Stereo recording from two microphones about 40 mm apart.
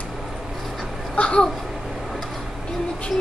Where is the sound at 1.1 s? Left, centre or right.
Left.